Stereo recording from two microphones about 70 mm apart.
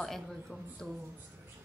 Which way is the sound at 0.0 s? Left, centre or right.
Centre.